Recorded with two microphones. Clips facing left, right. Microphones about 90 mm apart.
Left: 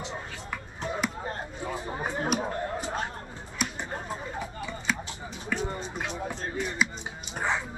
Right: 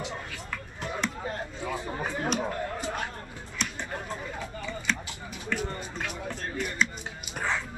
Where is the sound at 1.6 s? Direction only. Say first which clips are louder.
Even; 20° left (ahead or behind).